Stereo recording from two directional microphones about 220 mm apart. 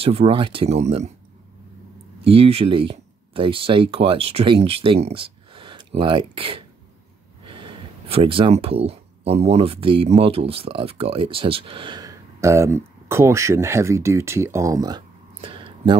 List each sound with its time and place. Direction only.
0.0 s speech: 25° right (ahead or behind)
2.2 s speech: 25° right (ahead or behind)